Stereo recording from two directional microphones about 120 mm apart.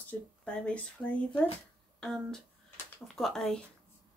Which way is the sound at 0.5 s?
10° left (ahead or behind).